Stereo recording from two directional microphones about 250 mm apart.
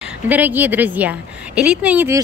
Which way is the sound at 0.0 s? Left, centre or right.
Centre.